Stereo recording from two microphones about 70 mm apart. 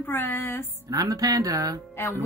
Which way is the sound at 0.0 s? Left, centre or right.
Left.